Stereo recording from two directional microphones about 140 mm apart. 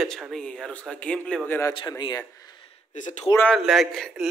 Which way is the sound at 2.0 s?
30° left (ahead or behind).